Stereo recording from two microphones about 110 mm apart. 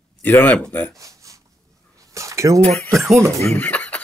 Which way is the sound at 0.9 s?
30° right (ahead or behind).